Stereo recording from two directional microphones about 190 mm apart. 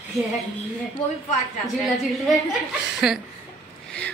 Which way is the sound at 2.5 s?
Centre (ahead or behind).